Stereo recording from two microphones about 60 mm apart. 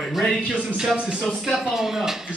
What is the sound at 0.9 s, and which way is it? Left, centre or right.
Speech, centre.